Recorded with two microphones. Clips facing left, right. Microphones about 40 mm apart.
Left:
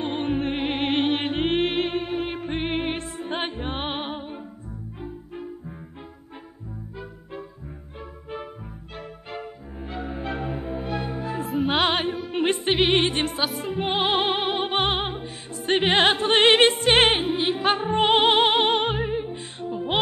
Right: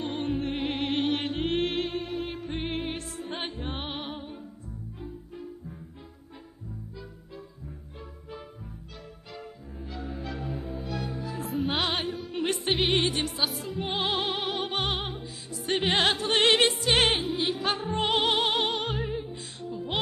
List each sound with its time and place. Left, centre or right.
0.0 s music: left
9.3 s music: left
11.4 s music: centre
12.3 s music: left